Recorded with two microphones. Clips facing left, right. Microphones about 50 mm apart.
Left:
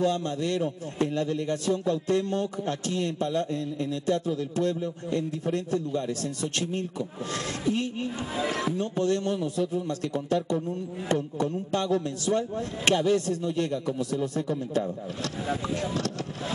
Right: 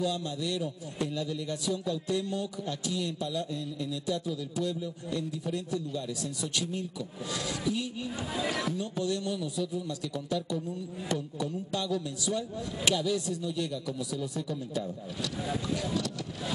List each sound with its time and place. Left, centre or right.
0.0 s a man's voice: left
8.4 s speech: left
8.7 s a man's voice: left